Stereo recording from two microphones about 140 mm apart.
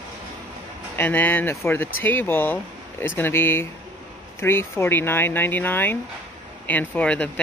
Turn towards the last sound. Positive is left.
turn(degrees=10)  # may be behind; listen again after turning